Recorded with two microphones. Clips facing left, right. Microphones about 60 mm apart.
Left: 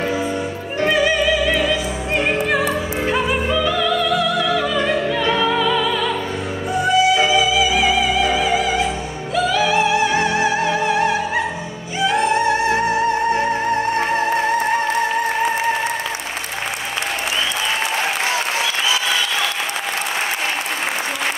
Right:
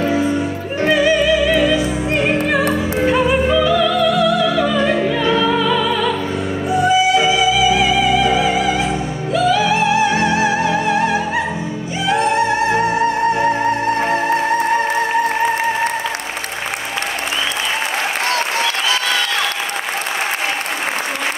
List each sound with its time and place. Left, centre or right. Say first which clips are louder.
0.8 s music: right 3 dB; centre
2.2 s opera: right 2 dB; centre
4.7 s opera: right 3 dB; centre
5.3 s music: right 1 dB; centre